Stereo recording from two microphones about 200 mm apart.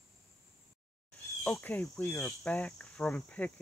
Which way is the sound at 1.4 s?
10° left (ahead or behind).